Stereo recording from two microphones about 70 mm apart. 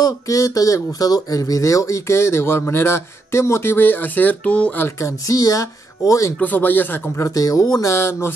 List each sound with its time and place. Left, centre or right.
0.0 s speech: left; by 4.7 s centre
5.0 s speech: left
6.4 s speech: left
7.2 s speech: left
7.9 s speech: left